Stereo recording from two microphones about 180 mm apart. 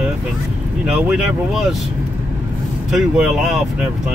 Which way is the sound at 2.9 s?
5° right (ahead or behind).